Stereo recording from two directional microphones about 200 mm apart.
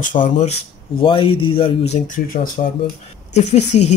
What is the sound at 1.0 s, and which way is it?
Speech, 25° left (ahead or behind).